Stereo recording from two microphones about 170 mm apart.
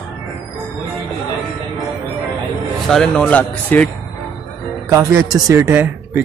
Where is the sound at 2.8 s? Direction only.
Centre (ahead or behind).